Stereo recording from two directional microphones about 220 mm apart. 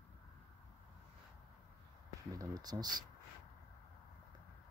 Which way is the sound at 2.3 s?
15° right (ahead or behind).